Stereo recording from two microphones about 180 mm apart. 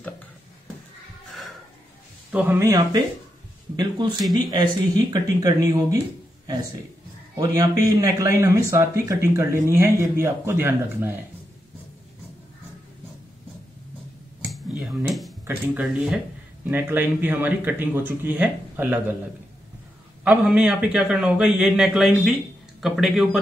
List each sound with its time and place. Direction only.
2.3 s a man's voice: 15° right (ahead or behind)
14.8 s a sound: centre (ahead or behind)
15.4 s a man's voice: 10° right (ahead or behind)
20.2 s a man's voice: 5° right (ahead or behind)